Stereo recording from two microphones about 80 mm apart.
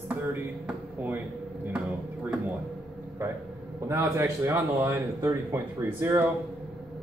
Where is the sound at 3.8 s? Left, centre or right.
Right.